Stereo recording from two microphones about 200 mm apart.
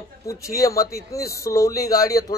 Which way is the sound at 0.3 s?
15° left (ahead or behind).